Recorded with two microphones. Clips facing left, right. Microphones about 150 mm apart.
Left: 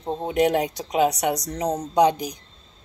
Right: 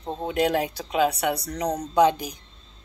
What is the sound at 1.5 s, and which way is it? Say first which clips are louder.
Speech: left 2 dB; 30° left (ahead or behind).